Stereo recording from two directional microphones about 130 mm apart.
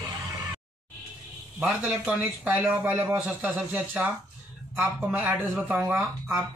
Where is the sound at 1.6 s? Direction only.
10° right (ahead or behind).